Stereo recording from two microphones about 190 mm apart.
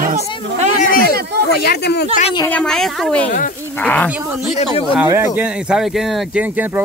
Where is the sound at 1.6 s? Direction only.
60° left (ahead or behind).